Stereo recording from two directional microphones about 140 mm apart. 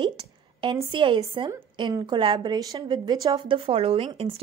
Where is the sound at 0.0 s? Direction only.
35° right (ahead or behind).